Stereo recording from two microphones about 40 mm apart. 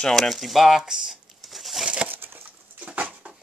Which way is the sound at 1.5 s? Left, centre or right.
Centre.